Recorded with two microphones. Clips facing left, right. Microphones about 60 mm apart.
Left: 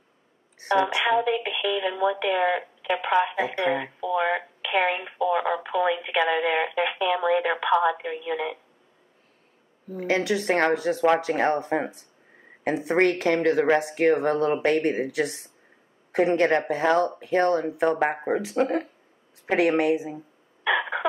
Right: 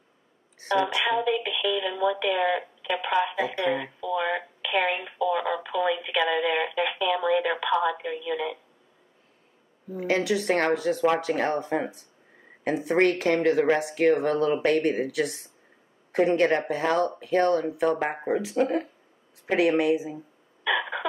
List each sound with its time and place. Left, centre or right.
0.7 s speech: left
9.9 s speech: left
13.0 s speech: left
20.7 s a sound: left